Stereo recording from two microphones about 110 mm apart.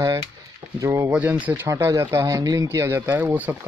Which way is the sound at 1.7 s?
25° right (ahead or behind).